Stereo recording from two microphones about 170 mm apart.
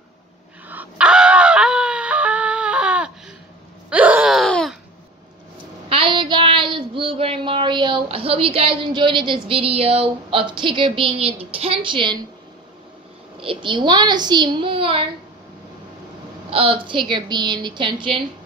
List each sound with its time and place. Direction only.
0.7 s a sound: 10° right (ahead or behind)
5.9 s child singing: 30° right (ahead or behind)
13.4 s a woman's voice: 30° right (ahead or behind)
16.4 s a woman's voice: 30° right (ahead or behind)